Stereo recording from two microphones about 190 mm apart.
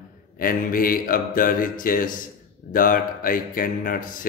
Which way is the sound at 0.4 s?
45° left (ahead or behind).